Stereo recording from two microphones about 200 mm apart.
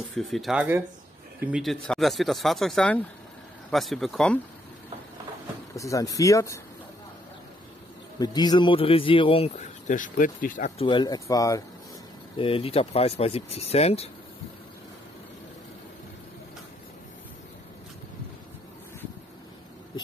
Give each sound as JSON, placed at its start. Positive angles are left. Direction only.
{"t": 0.1, "sound": "speech", "side_deg": 0}
{"t": 5.8, "sound": "speech", "side_deg": 15}
{"t": 8.2, "sound": "a man's voice", "side_deg": 20}
{"t": 10.8, "sound": "speech", "side_deg": 25}
{"t": 12.4, "sound": "speech", "side_deg": 30}